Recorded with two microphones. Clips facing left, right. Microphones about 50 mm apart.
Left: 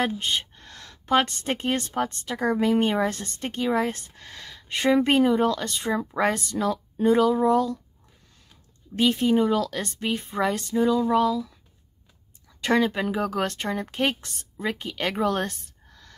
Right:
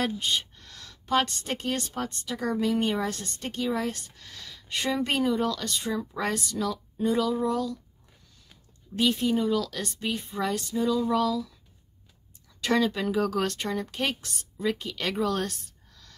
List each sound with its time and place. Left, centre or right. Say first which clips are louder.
0.0 s a woman's voice: left 2 dB; left
8.9 s a woman's voice: left 4 dB; left
10.9 s a woman's voice: left 3 dB; centre
12.5 s a woman's voice: left 3 dB; left